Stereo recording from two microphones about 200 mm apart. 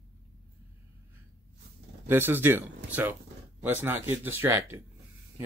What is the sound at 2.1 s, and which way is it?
Speech, 10° right (ahead or behind).